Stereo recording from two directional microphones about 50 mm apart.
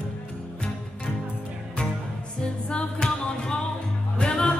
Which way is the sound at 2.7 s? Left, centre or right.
Centre.